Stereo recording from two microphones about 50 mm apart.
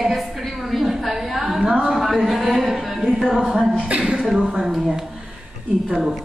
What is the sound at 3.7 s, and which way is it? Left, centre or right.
Speech, right.